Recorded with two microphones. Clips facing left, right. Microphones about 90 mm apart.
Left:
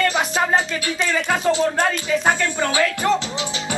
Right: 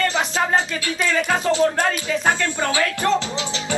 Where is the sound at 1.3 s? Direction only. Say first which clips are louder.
Even; 20° left (ahead or behind).